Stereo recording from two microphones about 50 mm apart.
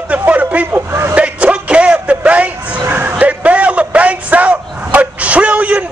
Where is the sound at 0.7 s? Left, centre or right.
Right.